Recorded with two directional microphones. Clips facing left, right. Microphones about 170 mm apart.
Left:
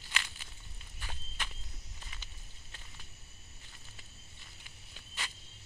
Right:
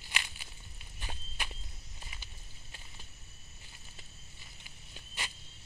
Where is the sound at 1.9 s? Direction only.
15° right (ahead or behind).